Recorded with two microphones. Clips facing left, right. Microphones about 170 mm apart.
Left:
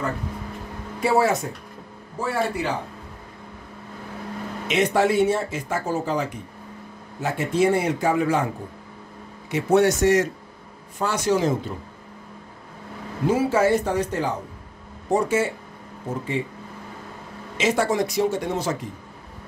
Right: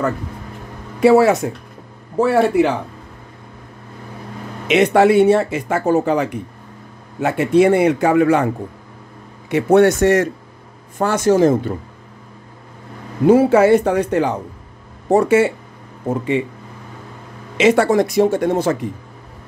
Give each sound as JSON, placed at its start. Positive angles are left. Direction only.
{"t": 1.0, "sound": "speech", "side_deg": -75}
{"t": 4.6, "sound": "speech", "side_deg": -70}
{"t": 9.5, "sound": "a man's voice", "side_deg": -60}
{"t": 13.3, "sound": "speech", "side_deg": -65}
{"t": 17.6, "sound": "speech", "side_deg": -65}